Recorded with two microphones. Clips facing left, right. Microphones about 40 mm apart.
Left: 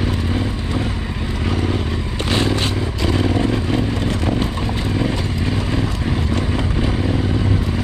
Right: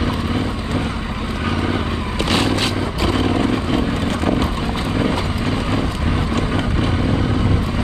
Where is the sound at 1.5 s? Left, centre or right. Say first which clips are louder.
Right 1 dB; centre.